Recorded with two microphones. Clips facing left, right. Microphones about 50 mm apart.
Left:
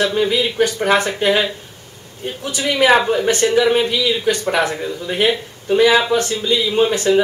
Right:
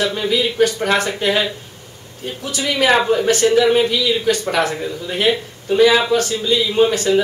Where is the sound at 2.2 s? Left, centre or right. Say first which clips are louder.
Left 1 dB; left.